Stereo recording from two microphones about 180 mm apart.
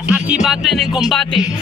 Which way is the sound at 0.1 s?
5° right (ahead or behind).